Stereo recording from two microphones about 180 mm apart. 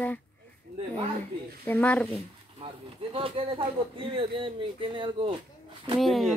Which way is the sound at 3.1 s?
30° right (ahead or behind).